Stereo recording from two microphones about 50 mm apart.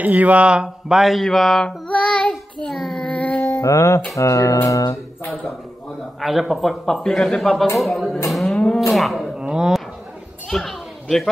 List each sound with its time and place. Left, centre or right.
0.0 s speech: right; by 1.0 s centre
1.0 s a man's voice: centre
1.9 s child singing: left
2.7 s child singing: centre
3.0 s a sound: left
3.3 s a sound: left
3.6 s speech: left
4.2 s speech: left
6.2 s a man's voice: centre
8.3 s cattle: centre
8.7 s a man's voice: centre
9.4 s a sound: centre
10.5 s children playing: centre